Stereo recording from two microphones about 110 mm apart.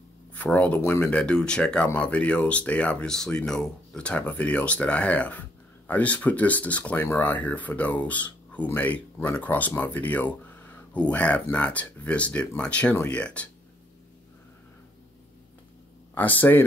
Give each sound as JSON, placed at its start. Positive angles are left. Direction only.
{"t": 0.3, "sound": "speech", "side_deg": 15}
{"t": 1.1, "sound": "speech", "side_deg": 10}
{"t": 16.2, "sound": "speech", "side_deg": 15}